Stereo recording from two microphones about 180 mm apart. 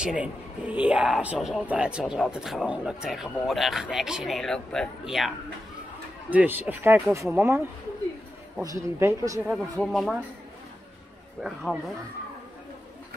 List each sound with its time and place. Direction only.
0.0 s a man's voice: 5° right (ahead or behind)
6.3 s speech: 10° right (ahead or behind)
8.6 s speech: 15° right (ahead or behind)
9.5 s a man's voice: centre (ahead or behind)
11.4 s a man's voice: centre (ahead or behind)